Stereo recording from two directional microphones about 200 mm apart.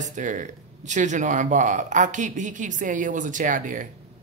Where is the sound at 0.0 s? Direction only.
40° right (ahead or behind).